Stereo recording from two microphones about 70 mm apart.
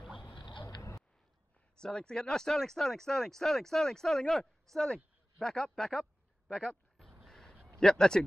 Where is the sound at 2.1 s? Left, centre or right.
Centre.